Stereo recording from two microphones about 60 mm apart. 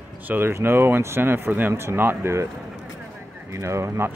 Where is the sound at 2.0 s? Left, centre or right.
Right.